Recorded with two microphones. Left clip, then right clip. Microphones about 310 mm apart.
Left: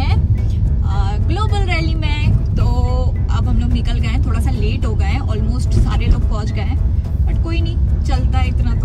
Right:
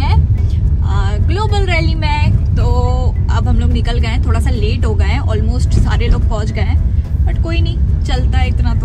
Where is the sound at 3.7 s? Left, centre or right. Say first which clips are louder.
Right 4 dB; centre.